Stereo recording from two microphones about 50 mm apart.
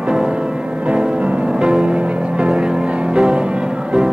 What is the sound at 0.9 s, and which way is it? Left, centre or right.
Music, right.